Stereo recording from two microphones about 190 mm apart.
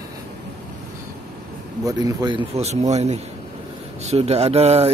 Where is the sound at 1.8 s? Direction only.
20° right (ahead or behind).